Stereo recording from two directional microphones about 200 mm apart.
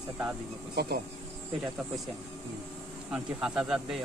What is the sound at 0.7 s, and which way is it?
Speech, 50° right (ahead or behind).